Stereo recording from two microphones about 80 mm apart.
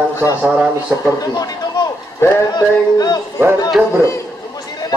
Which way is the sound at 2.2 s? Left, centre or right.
Left.